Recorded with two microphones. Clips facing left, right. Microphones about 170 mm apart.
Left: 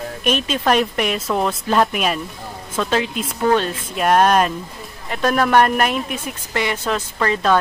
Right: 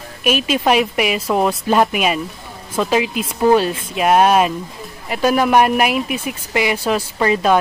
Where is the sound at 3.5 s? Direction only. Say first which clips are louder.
Right 4 dB; 10° right (ahead or behind).